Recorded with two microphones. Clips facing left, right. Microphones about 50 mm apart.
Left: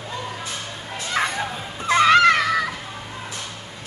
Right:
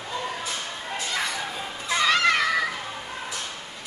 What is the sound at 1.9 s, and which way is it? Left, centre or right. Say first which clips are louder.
Music: left 7 dB; left.